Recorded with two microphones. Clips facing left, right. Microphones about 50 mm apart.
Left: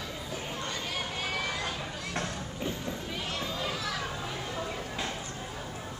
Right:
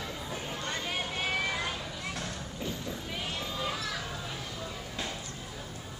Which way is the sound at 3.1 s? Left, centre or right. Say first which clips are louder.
Even; centre.